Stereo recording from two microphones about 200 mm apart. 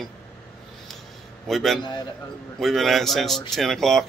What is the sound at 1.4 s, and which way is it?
Speech, centre (ahead or behind).